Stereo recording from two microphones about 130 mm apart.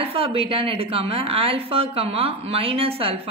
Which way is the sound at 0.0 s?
45° right (ahead or behind).